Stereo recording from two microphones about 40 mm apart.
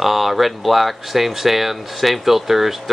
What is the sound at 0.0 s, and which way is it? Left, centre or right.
Speech, centre.